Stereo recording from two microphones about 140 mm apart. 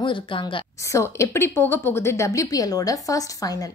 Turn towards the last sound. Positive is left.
turn(degrees=25)  # may be behind; listen again after turning